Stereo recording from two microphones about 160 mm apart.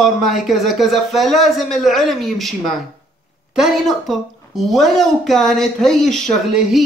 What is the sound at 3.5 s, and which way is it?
A woman's voice, centre (ahead or behind).